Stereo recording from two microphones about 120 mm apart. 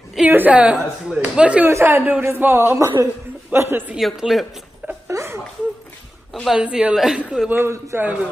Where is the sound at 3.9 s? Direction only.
Centre (ahead or behind).